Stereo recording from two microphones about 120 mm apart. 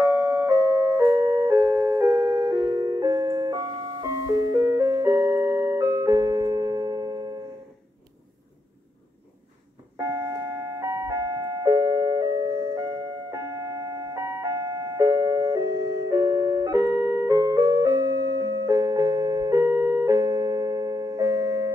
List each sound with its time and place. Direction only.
0.0 s music: 20° right (ahead or behind)
9.9 s music: 30° right (ahead or behind)